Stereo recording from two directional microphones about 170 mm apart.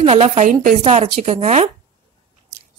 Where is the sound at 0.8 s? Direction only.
40° right (ahead or behind).